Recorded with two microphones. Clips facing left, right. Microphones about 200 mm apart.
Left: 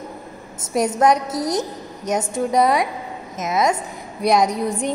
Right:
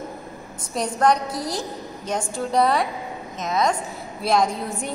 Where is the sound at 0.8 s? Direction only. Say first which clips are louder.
Left 2 dB; 20° left (ahead or behind).